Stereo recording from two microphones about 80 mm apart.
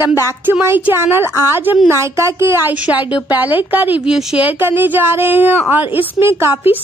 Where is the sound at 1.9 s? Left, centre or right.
Right.